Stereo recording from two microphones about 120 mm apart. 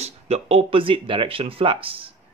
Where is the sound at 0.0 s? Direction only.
55° right (ahead or behind).